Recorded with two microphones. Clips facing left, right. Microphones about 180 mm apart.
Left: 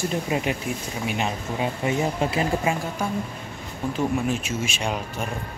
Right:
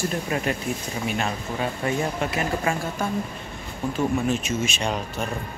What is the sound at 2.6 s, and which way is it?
Speech, 15° left (ahead or behind).